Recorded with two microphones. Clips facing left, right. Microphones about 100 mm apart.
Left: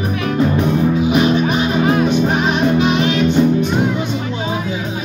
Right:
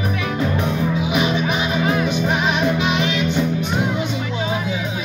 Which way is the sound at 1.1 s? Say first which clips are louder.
Left 5 dB; 40° left (ahead or behind).